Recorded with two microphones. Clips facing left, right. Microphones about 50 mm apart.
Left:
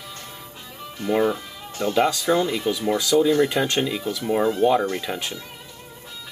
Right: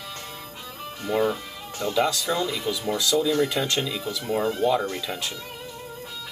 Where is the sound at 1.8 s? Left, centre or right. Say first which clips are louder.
Left 3 dB; left.